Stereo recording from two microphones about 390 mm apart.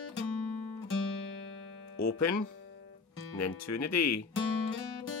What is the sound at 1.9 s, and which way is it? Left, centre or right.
Speech, left.